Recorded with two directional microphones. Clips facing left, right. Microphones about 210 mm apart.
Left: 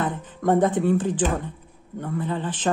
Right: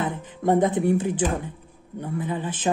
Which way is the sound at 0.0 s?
10° right (ahead or behind).